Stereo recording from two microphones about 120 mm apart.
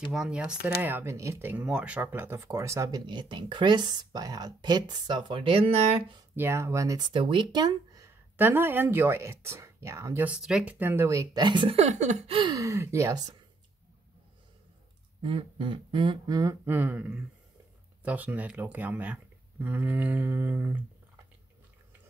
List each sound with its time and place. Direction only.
0.1 s a sound: 5° right (ahead or behind)
0.8 s speech: 20° right (ahead or behind)
3.1 s speech: 40° right (ahead or behind)
6.3 s speech: 20° right (ahead or behind)
7.0 s speech: 45° right (ahead or behind)
8.0 s speech: 20° right (ahead or behind)
10.2 s speech: 5° right (ahead or behind); by 11.7 s 40° right (ahead or behind)
11.7 s speech: 70° right (ahead or behind)
12.5 s speech: 25° right (ahead or behind)
15.2 s a sound: 45° right (ahead or behind)
16.3 s speech: 25° right (ahead or behind)
16.7 s a sound: 15° right (ahead or behind)